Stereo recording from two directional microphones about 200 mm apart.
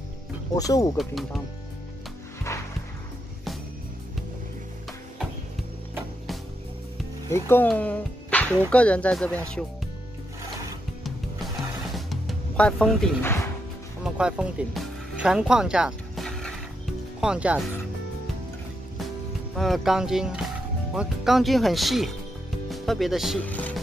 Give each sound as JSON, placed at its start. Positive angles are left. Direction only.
{"t": 0.6, "sound": "speech", "side_deg": 15}
{"t": 0.9, "sound": "speech", "side_deg": 0}
{"t": 7.2, "sound": "speech", "side_deg": 10}
{"t": 11.1, "sound": "music", "side_deg": 0}
{"t": 19.5, "sound": "speech", "side_deg": 0}